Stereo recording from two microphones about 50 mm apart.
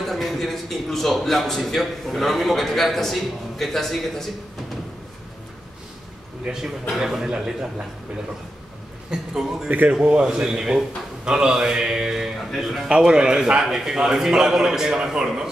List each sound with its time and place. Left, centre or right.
0.0 s a man's voice: centre
6.4 s a man's voice: centre
9.1 s a man's voice: centre
9.7 s speech: right
10.2 s a man's voice: centre
12.9 s a man's voice: centre